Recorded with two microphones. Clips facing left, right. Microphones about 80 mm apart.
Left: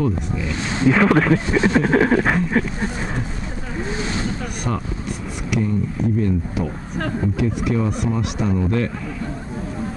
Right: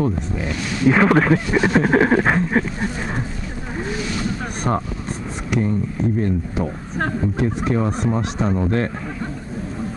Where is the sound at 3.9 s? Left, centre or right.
Left.